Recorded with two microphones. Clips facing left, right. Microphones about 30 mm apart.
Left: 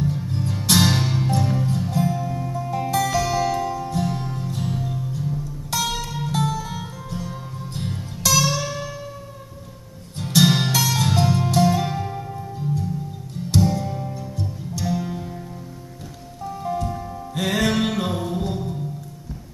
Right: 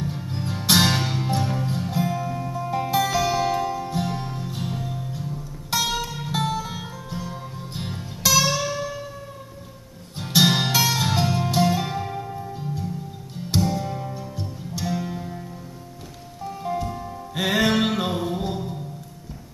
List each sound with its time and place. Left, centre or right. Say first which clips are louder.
0.0 s music: left 4 dB; centre
10.1 s music: left 1 dB; centre
15.0 s music: left 1 dB; centre
16.4 s music: left 1 dB; centre